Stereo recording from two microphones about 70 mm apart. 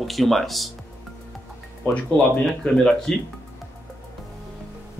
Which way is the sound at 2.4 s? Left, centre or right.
Centre.